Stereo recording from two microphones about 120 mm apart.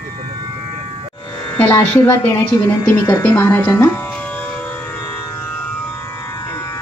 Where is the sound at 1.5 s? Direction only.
20° left (ahead or behind).